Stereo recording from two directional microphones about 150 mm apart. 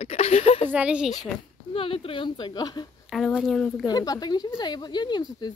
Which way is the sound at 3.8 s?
25° left (ahead or behind).